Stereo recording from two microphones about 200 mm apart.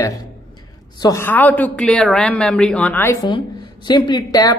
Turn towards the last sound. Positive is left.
turn(degrees=20)  # may be behind; listen again after turning